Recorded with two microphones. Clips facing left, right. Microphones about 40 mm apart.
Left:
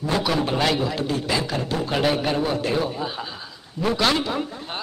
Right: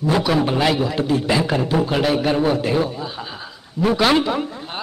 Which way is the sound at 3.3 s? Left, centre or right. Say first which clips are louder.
Right 3 dB; centre.